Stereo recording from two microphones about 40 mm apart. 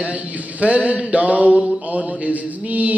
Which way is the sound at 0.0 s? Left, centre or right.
Right.